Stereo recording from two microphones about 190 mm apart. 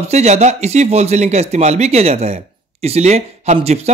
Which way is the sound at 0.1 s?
35° right (ahead or behind).